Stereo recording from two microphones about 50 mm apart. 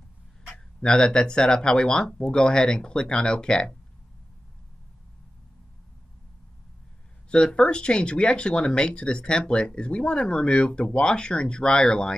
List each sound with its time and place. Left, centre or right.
0.7 s speech: centre
7.2 s speech: centre